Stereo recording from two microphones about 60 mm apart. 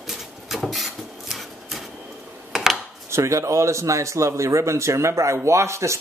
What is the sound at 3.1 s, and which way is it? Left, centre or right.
Speech, right.